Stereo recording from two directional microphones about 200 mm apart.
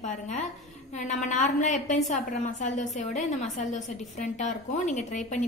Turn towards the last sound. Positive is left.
turn(degrees=35)  # may be behind; listen again after turning